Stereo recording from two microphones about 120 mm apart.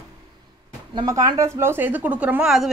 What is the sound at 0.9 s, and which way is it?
A woman's voice, 30° right (ahead or behind).